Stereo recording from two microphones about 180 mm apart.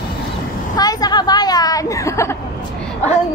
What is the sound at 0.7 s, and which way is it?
A woman's voice, 20° left (ahead or behind).